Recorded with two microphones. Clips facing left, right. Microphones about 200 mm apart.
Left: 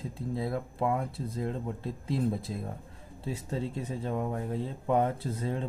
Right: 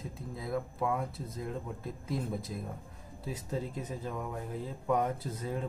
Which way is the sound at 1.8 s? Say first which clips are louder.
Left 7 dB; 30° left (ahead or behind).